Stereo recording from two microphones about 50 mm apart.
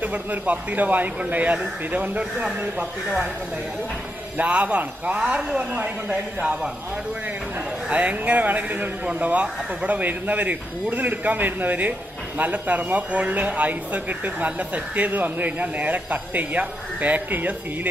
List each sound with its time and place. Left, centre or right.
0.0 s speech: right
4.4 s speech: right
7.9 s speech: right